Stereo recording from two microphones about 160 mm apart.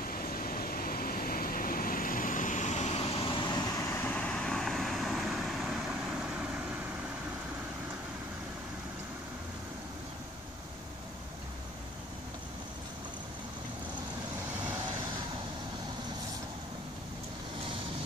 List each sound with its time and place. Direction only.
0.0 s vehicle: 65° left (ahead or behind); by 3.6 s 30° left (ahead or behind)
3.9 s vehicle: 10° left (ahead or behind)